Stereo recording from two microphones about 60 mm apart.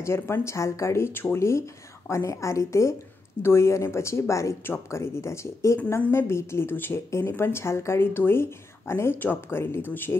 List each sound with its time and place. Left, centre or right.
0.0 s a woman's voice: left
4.6 s speech: left